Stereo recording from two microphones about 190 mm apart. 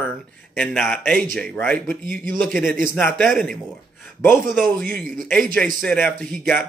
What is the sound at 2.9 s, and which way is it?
Speech, 5° left (ahead or behind).